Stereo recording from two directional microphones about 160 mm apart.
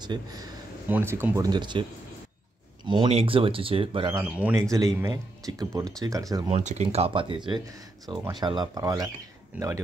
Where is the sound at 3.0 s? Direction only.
35° right (ahead or behind).